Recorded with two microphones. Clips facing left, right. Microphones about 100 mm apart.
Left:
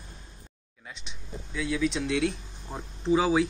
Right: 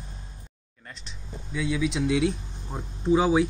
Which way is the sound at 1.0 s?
Centre (ahead or behind).